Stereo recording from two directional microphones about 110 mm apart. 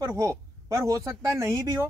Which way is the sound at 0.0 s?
25° right (ahead or behind).